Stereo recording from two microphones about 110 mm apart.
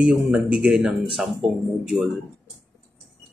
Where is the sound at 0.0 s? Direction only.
10° right (ahead or behind).